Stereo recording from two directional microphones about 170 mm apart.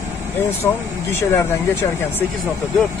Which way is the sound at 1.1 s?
15° left (ahead or behind).